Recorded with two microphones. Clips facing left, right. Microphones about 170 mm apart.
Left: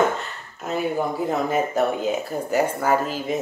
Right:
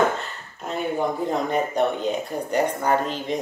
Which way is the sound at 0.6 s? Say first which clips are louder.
Left 1 dB; 5° left (ahead or behind).